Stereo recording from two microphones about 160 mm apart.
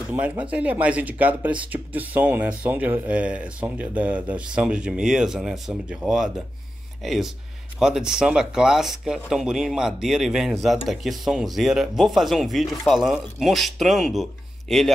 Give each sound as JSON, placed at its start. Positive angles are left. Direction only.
{"t": 0.1, "sound": "speech", "side_deg": -10}